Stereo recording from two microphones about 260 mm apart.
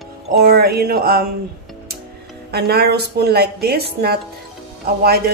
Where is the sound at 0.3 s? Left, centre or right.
Right.